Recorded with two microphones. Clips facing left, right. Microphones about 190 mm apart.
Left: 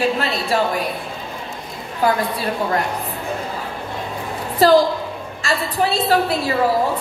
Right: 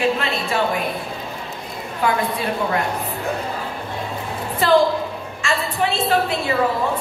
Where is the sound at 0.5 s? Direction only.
35° left (ahead or behind).